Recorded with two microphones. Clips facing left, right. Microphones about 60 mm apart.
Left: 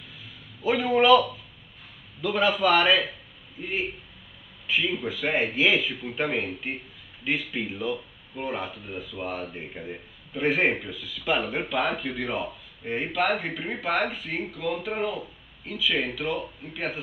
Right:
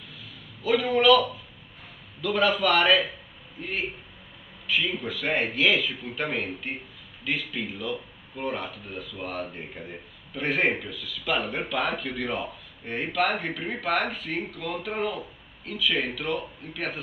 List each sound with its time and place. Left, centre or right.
0.6 s a man's voice: left
2.2 s a man's voice: centre
6.2 s a man's voice: centre
7.2 s a man's voice: centre